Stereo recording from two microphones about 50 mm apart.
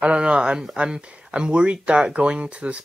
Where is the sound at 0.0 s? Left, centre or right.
Right.